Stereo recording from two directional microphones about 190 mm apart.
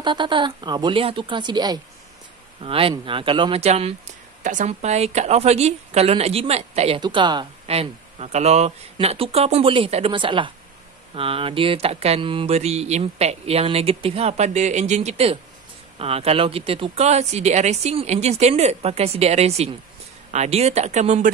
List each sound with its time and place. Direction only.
0.0 s speech: 25° right (ahead or behind)
4.4 s mantra: 40° right (ahead or behind)
7.0 s mantra: 25° right (ahead or behind)